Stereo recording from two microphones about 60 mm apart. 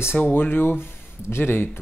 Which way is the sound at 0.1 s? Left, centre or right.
Left.